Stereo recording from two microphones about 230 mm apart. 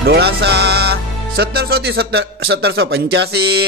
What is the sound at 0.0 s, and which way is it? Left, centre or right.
Music, right.